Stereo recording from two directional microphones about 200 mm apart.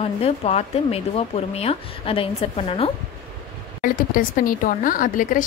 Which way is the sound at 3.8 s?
45° left (ahead or behind).